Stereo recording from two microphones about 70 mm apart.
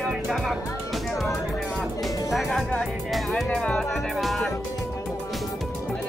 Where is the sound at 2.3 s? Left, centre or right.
Centre.